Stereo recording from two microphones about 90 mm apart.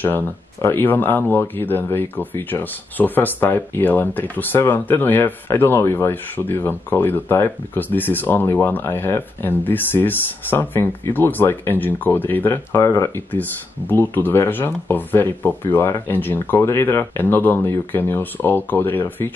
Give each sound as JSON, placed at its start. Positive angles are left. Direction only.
{"t": 0.0, "sound": "speech", "side_deg": 25}
{"t": 12.7, "sound": "speech", "side_deg": 35}
{"t": 13.3, "sound": "speech", "side_deg": 20}